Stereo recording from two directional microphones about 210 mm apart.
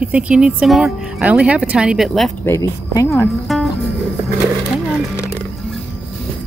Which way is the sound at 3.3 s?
Centre (ahead or behind).